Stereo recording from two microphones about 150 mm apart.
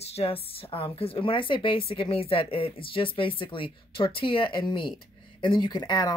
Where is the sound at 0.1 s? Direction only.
40° left (ahead or behind).